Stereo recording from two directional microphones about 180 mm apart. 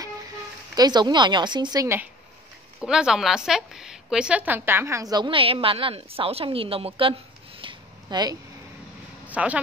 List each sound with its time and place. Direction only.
0.7 s a woman's voice: 25° right (ahead or behind)
2.8 s a woman's voice: 5° right (ahead or behind); by 6.9 s 30° right (ahead or behind)
7.0 s a sound: 30° right (ahead or behind)
9.3 s speech: 10° right (ahead or behind)